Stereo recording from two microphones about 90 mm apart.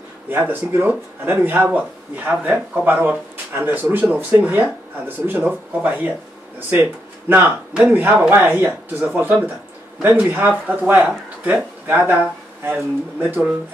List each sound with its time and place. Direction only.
0.3 s speech: 20° right (ahead or behind)